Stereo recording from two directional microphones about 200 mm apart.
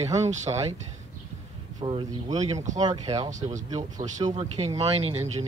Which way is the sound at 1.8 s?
25° right (ahead or behind).